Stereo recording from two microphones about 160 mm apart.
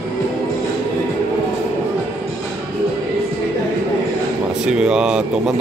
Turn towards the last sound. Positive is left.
turn(degrees=-5)  # may be behind; listen again after turning